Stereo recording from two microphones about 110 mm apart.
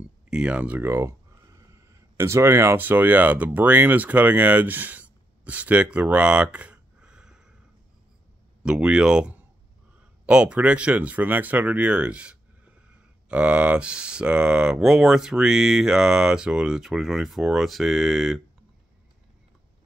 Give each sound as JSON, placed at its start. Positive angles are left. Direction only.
{"t": 0.3, "sound": "speech", "side_deg": -10}
{"t": 8.6, "sound": "speech", "side_deg": -10}